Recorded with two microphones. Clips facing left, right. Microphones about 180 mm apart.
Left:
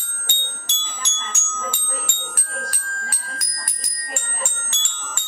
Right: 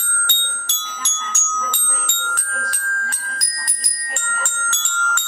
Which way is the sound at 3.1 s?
5° left (ahead or behind).